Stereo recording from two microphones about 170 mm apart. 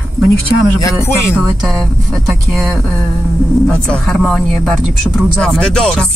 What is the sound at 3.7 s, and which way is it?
Speech, 5° left (ahead or behind).